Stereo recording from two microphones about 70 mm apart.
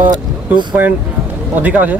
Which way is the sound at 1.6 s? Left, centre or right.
Right.